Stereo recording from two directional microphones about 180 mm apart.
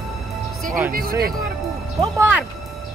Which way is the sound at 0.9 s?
55° right (ahead or behind).